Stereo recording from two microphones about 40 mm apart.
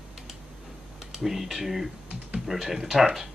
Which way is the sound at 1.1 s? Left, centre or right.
Centre.